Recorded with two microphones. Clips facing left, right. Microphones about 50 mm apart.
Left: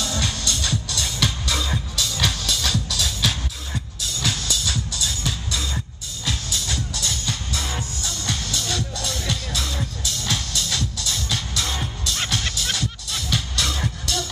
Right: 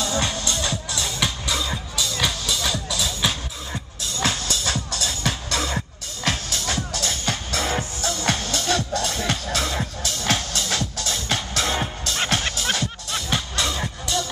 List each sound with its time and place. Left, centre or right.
0.0 s music: right
4.2 s music: right
11.6 s music: right
13.7 s music: centre